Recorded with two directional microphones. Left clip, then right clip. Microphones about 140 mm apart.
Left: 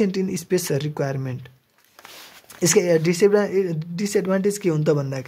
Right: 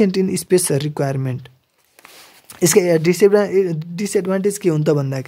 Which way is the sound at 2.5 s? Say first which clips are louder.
Right 4 dB; 45° right (ahead or behind).